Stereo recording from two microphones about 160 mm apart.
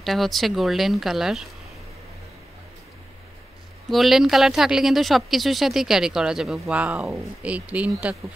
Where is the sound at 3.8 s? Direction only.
Centre (ahead or behind).